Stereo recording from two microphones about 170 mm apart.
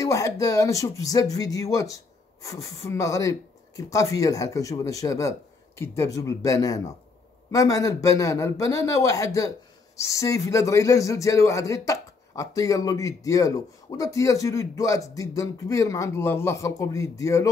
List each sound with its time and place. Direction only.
0.0 s a man's voice: 20° left (ahead or behind)